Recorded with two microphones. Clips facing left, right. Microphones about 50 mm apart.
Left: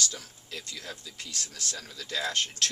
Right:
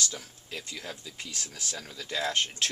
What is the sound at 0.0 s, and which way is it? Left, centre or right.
Speech, centre.